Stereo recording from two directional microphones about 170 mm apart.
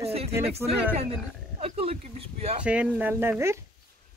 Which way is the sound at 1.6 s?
35° right (ahead or behind).